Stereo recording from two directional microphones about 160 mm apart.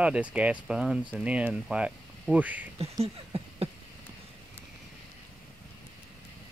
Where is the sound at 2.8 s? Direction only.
40° right (ahead or behind).